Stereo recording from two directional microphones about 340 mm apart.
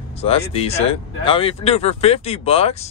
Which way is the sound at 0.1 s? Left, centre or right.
Centre.